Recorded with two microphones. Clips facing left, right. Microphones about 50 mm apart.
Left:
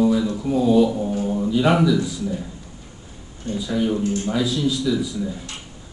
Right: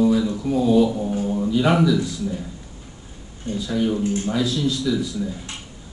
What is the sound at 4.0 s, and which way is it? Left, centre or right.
Speech, right.